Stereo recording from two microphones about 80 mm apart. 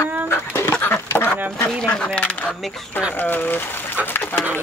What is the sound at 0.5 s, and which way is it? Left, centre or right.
Dog, left.